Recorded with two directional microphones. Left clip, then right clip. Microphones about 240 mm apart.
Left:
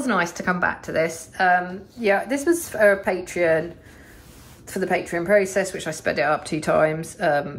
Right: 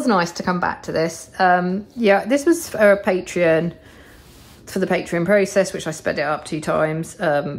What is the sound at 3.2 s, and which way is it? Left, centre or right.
Speech, centre.